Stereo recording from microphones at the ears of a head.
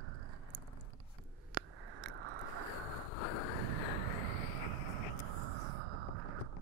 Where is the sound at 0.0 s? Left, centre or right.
Right.